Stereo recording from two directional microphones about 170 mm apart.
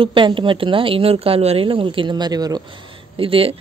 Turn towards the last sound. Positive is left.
turn(degrees=-35)  # may be behind; listen again after turning